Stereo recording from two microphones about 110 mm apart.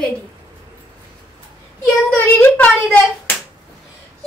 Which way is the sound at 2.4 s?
15° left (ahead or behind).